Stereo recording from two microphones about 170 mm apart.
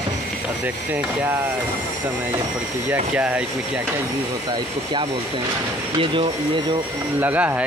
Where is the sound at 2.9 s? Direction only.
10° right (ahead or behind).